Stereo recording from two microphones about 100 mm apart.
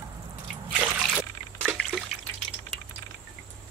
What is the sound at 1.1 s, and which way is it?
Trickle, 5° right (ahead or behind).